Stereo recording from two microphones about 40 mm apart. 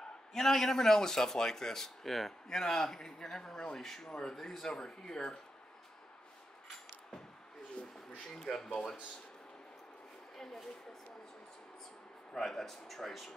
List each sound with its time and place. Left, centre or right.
0.0 s a man's voice: centre
4.4 s a man's voice: centre
7.8 s a sound: left
8.4 s a man's voice: centre
10.3 s a man's voice: centre
12.4 s speech: centre